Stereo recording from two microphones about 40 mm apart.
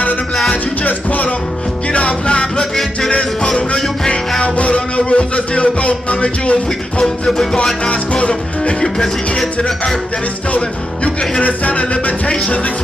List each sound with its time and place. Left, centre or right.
0.8 s music: left
1.9 s music: left
2.6 s music: centre
3.1 s music: left
8.8 s music: centre
11.1 s speech: left